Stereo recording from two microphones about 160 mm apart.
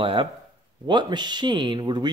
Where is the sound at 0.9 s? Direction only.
30° right (ahead or behind).